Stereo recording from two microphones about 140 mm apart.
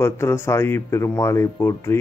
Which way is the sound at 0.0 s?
20° left (ahead or behind).